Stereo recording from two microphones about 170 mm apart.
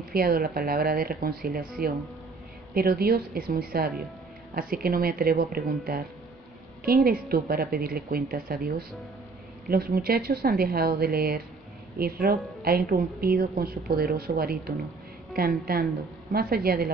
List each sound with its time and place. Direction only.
0.1 s a woman's voice: 60° right (ahead or behind)